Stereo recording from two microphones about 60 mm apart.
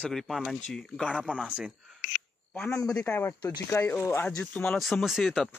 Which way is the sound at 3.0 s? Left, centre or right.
Left.